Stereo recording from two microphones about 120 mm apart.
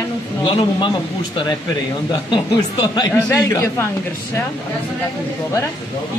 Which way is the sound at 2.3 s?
40° left (ahead or behind).